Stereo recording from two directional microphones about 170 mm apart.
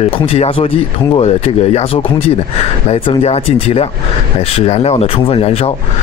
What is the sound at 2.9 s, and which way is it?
Speech, 35° left (ahead or behind).